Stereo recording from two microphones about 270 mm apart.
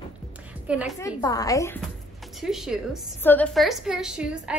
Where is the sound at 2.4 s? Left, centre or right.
Centre.